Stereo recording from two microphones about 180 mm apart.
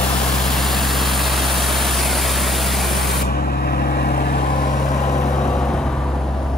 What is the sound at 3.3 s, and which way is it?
Vehicle, 60° left (ahead or behind).